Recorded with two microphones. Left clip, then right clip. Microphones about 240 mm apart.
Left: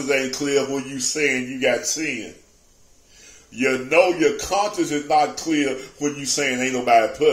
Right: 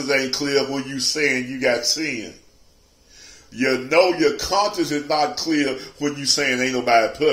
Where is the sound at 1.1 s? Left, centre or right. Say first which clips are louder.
Even; centre.